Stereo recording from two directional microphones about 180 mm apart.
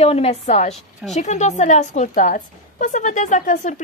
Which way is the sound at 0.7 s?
Centre (ahead or behind).